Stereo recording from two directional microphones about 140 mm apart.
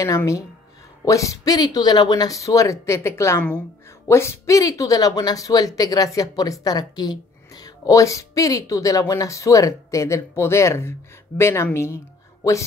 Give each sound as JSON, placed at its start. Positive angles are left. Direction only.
{"t": 0.0, "sound": "speech", "side_deg": 20}